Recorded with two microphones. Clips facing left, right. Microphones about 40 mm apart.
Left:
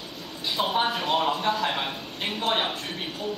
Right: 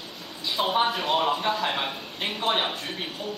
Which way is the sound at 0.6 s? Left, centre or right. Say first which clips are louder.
Right 1 dB; centre.